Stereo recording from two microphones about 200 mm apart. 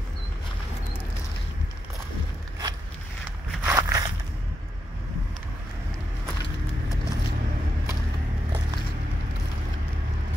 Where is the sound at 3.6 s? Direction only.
15° right (ahead or behind).